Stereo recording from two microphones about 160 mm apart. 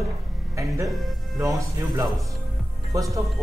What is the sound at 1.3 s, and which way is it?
Speech, 20° right (ahead or behind).